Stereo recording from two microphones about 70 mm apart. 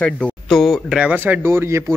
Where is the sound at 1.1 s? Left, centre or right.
Right.